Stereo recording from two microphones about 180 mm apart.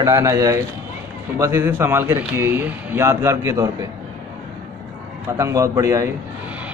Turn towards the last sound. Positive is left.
turn(degrees=-15)  # may be behind; listen again after turning